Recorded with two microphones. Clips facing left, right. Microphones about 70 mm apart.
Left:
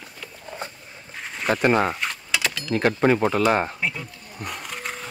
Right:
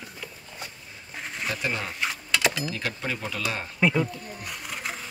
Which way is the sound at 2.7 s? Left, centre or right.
Left.